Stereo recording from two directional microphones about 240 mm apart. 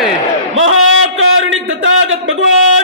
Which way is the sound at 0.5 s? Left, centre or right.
Right.